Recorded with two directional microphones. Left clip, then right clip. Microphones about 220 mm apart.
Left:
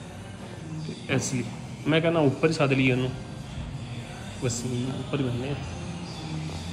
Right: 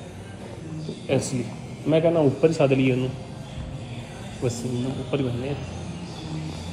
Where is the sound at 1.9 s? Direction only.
10° left (ahead or behind).